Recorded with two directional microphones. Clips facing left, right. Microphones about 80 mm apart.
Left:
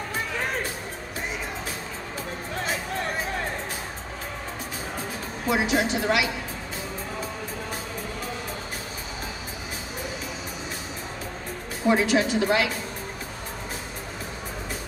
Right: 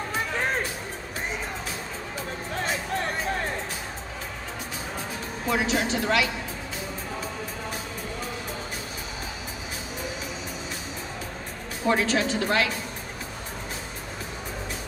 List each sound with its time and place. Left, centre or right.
5.5 s speech: centre
11.9 s speech: centre